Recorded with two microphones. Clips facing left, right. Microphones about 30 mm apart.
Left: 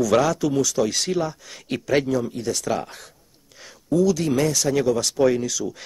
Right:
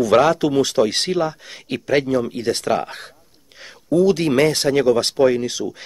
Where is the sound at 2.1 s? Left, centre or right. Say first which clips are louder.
Right 4 dB; right.